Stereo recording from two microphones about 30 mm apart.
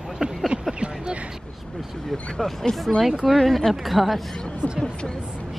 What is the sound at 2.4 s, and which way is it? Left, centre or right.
Speech, left.